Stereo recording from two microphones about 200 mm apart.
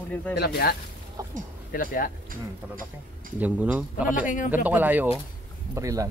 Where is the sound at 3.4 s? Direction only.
5° right (ahead or behind).